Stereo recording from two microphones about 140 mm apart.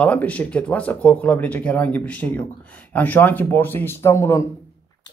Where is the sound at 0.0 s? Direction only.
10° left (ahead or behind).